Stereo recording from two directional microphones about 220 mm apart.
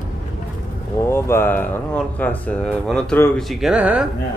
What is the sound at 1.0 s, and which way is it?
Speech, 10° left (ahead or behind).